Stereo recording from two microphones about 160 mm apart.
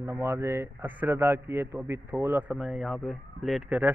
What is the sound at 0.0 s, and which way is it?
A man's voice, 15° right (ahead or behind).